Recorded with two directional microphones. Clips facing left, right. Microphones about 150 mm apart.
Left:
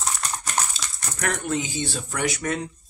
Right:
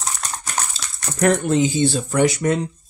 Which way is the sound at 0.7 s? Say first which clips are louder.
Right 3 dB; 30° right (ahead or behind).